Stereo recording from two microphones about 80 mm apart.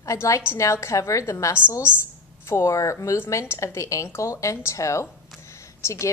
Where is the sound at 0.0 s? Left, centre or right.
Left.